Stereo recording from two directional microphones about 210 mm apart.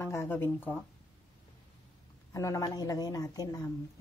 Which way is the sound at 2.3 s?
15° left (ahead or behind).